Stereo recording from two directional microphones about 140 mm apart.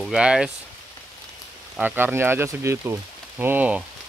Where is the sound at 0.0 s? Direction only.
5° right (ahead or behind).